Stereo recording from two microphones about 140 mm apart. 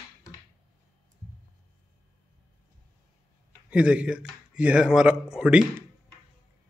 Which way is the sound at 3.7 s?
10° right (ahead or behind).